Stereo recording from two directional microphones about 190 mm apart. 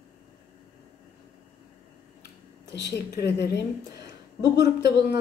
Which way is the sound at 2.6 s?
60° left (ahead or behind).